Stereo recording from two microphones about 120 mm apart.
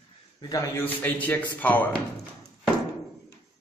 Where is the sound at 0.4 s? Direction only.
30° left (ahead or behind).